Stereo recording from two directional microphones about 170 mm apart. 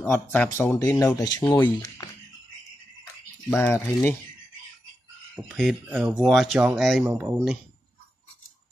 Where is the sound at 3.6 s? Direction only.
10° left (ahead or behind).